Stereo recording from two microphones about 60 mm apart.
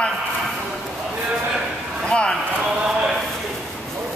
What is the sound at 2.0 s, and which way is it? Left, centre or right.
Speech, centre.